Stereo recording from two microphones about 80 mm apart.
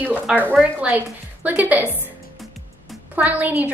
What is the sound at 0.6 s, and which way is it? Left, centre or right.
A woman's voice, centre.